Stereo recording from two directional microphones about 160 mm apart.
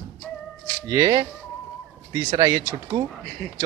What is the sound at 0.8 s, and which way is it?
Speech, 25° right (ahead or behind).